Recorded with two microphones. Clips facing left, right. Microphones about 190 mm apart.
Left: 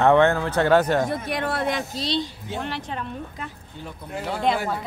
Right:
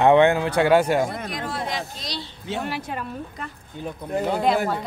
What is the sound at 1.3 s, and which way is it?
Speech, 65° left (ahead or behind).